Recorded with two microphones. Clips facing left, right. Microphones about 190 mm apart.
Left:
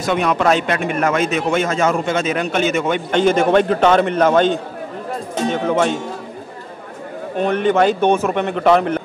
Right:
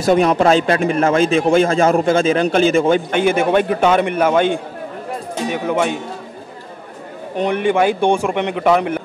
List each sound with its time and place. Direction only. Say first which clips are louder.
0.0 s a man's voice: right 4 dB; 35° right (ahead or behind)
3.1 s a man's voice: left 1 dB; 10° right (ahead or behind)
7.3 s a man's voice: even; 15° right (ahead or behind)